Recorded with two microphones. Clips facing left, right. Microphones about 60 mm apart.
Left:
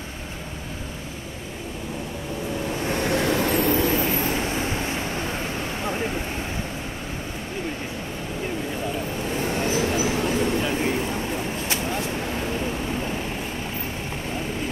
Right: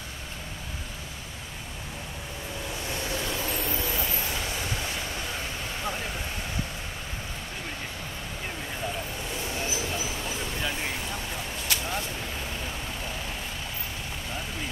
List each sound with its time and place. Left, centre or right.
2.8 s vehicle: left
9.4 s mouse: left
10.6 s a sound: left